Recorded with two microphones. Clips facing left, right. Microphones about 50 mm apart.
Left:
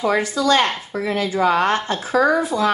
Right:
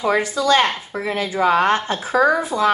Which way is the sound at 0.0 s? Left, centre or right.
Centre.